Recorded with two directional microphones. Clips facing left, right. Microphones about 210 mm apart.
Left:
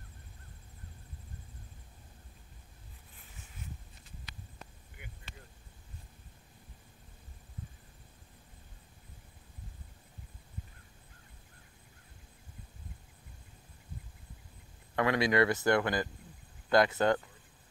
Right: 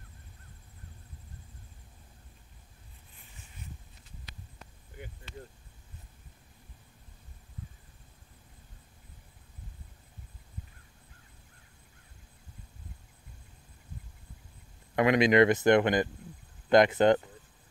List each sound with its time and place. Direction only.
15.0 s speech: 20° right (ahead or behind)